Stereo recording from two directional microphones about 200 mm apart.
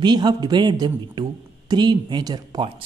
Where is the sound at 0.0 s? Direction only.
20° right (ahead or behind).